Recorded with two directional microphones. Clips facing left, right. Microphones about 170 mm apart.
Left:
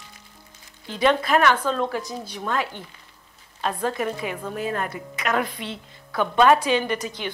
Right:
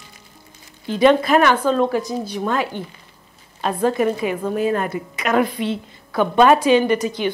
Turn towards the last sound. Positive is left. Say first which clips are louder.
# right 9 dB
turn(degrees=-10)  # may be behind; listen again after turning